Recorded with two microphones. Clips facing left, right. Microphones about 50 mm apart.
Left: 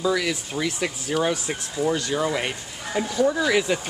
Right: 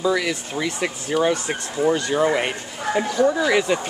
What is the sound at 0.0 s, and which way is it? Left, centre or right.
Speech, centre.